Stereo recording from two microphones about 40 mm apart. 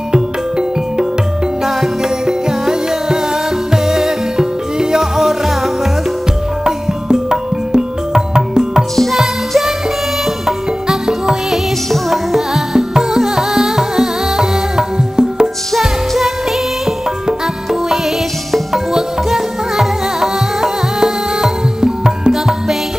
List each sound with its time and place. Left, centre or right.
0.1 s music: centre
2.2 s music: centre
6.6 s music: centre
8.9 s music: centre
10.4 s music: centre
18.9 s music: centre
22.3 s music: centre